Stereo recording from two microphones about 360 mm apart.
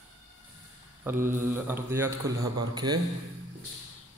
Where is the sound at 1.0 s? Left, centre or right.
Centre.